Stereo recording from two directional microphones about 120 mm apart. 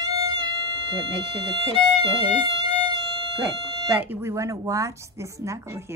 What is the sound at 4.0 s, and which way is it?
Speech, 25° right (ahead or behind).